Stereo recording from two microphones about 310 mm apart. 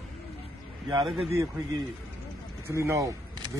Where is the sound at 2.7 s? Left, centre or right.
Centre.